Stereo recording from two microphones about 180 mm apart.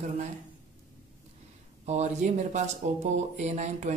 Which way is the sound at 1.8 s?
40° right (ahead or behind).